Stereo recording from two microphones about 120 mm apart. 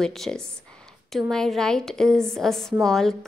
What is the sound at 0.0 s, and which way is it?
A woman's voice, 5° left (ahead or behind).